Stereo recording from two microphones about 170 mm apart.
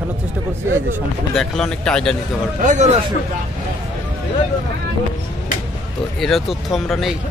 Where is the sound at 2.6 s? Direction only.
50° right (ahead or behind).